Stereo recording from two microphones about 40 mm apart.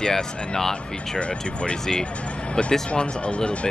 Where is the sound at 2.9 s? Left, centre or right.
Left.